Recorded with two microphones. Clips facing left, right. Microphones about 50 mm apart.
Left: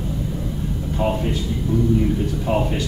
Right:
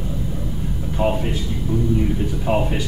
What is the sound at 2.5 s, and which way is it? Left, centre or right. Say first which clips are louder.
Speech: right 1 dB; centre.